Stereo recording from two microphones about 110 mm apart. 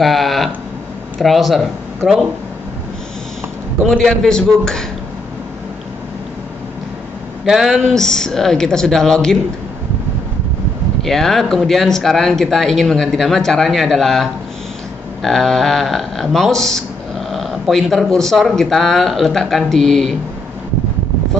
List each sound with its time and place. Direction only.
0.0 s speech: centre (ahead or behind)
3.9 s speech: 5° left (ahead or behind)
7.4 s speech: 5° right (ahead or behind)
11.0 s speech: centre (ahead or behind)